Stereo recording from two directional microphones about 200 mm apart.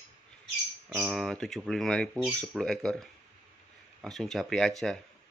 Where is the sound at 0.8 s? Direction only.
5° right (ahead or behind).